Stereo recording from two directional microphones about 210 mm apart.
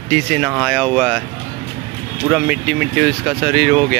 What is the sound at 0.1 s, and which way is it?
Speech, 5° right (ahead or behind).